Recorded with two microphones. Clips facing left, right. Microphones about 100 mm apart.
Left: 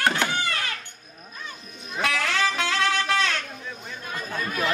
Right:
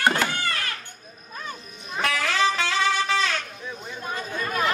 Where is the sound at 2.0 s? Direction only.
Centre (ahead or behind).